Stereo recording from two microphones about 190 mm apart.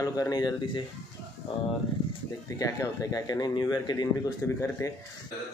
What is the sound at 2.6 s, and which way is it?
Speech, 20° left (ahead or behind).